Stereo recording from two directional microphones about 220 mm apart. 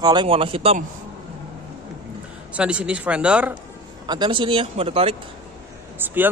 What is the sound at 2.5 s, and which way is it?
Speech, 5° right (ahead or behind).